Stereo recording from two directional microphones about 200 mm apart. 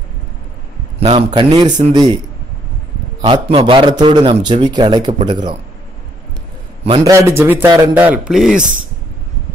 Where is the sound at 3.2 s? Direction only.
25° right (ahead or behind).